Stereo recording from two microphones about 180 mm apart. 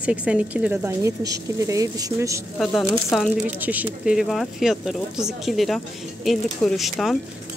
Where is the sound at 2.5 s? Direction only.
Centre (ahead or behind).